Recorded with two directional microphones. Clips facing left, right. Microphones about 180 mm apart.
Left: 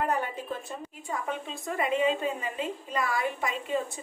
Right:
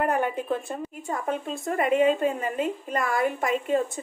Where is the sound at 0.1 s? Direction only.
60° right (ahead or behind).